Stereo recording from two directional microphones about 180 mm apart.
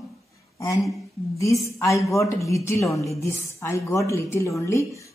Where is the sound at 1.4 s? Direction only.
15° left (ahead or behind).